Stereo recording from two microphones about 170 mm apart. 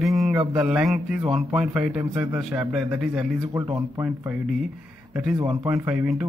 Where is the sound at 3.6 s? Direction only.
20° right (ahead or behind).